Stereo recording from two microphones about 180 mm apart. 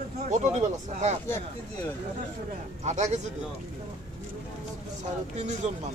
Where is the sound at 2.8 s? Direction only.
40° right (ahead or behind).